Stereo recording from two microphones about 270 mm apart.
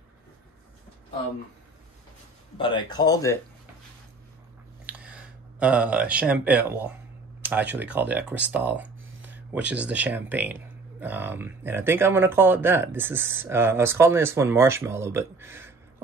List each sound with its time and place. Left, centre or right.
2.5 s speech: centre
4.8 s a sound: centre
7.4 s speech: centre